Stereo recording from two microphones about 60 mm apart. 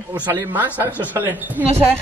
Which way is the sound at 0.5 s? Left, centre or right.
Right.